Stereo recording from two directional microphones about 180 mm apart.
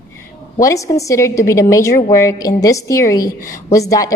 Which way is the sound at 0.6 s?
15° left (ahead or behind).